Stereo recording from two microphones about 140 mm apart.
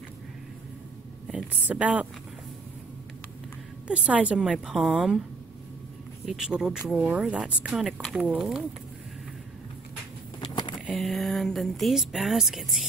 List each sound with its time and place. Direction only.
1.2 s a woman's voice: 10° right (ahead or behind)
3.8 s a woman's voice: 10° right (ahead or behind)
6.2 s speech: 5° right (ahead or behind)
10.4 s a sound: 30° left (ahead or behind)
10.9 s speech: centre (ahead or behind)